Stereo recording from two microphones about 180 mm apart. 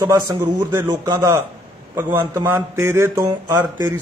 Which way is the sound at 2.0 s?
10° right (ahead or behind).